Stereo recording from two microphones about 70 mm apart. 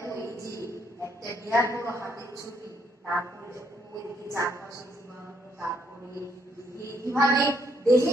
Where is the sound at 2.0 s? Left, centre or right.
Right.